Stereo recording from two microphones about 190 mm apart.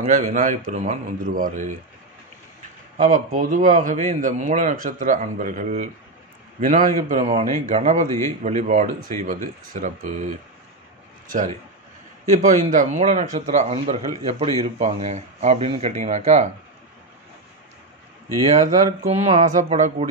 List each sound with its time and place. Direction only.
0.0 s a man's voice: 40° right (ahead or behind)
3.0 s a man's voice: 40° right (ahead or behind)
12.3 s a man's voice: 40° right (ahead or behind)
18.9 s a man's voice: 35° right (ahead or behind)